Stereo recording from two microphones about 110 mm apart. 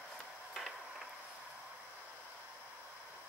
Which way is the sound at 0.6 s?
Centre (ahead or behind).